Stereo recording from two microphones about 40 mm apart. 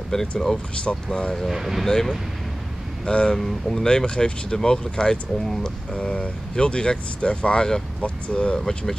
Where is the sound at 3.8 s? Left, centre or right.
Left.